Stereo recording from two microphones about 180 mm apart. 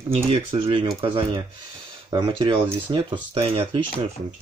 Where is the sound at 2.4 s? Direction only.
25° right (ahead or behind).